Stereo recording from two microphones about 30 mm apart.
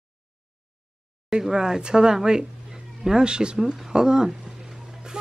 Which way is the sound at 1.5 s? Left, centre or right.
Right.